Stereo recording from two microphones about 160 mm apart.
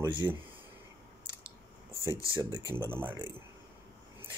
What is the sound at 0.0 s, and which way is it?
Speech, 30° right (ahead or behind).